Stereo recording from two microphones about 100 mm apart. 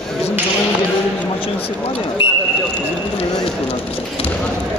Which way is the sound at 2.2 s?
60° left (ahead or behind).